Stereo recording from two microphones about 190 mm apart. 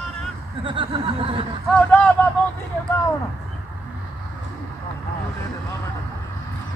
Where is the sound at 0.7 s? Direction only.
30° right (ahead or behind).